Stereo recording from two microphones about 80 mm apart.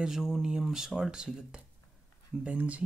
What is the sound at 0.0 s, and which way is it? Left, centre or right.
Speech, centre.